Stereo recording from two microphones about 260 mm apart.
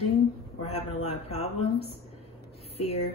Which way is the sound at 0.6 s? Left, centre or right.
Left.